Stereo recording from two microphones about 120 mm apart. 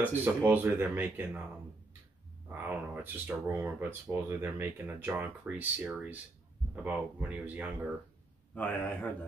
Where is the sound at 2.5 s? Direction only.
15° right (ahead or behind).